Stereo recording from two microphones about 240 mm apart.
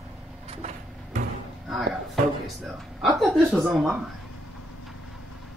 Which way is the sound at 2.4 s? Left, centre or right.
Centre.